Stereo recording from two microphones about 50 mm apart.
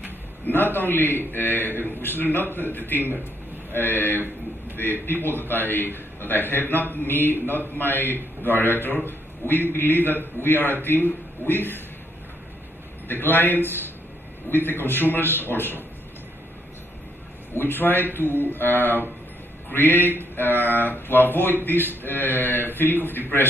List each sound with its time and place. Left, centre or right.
0.5 s a man's voice: left
13.1 s a man's voice: left
17.6 s speech: left